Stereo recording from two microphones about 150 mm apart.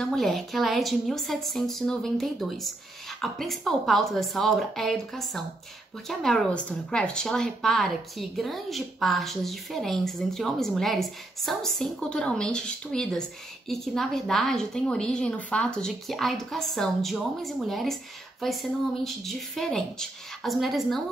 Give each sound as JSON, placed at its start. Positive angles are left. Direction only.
{"t": 0.0, "sound": "speech", "side_deg": 0}